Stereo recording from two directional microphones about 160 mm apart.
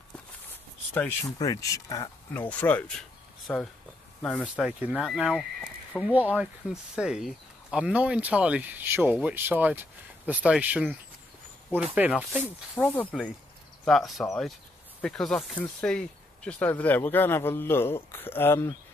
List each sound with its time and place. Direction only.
1.2 s speech: 20° left (ahead or behind)
2.3 s speech: 10° left (ahead or behind)
4.6 s speech: 10° right (ahead or behind)
12.4 s speech: 15° left (ahead or behind)